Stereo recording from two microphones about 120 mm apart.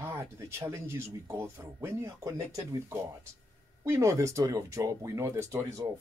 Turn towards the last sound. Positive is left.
turn(degrees=-25)  # may be behind; listen again after turning